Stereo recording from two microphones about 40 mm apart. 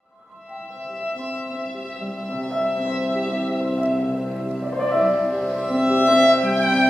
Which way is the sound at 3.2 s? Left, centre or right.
Centre.